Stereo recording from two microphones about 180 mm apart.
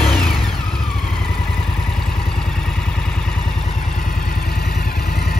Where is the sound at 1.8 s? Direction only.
Centre (ahead or behind).